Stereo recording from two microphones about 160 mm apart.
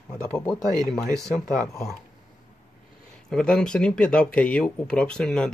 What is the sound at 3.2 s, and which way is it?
Speech, 5° left (ahead or behind).